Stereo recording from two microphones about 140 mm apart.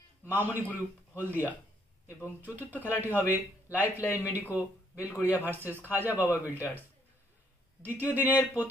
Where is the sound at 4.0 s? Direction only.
20° left (ahead or behind).